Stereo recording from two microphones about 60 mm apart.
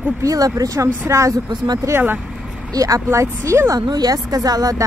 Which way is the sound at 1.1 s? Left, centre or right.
Right.